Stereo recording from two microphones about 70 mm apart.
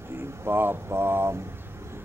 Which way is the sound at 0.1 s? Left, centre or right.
Right.